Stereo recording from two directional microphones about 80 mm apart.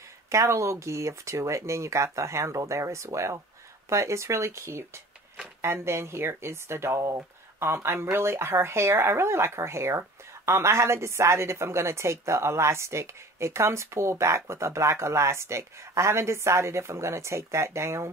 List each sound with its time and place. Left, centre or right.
0.3 s speech: right